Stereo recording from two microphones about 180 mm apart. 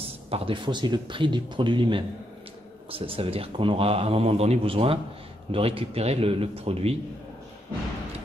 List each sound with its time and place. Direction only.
0.3 s a man's voice: 25° right (ahead or behind)